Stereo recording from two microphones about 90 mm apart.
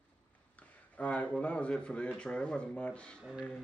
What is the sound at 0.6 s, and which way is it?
A man's voice, 15° left (ahead or behind).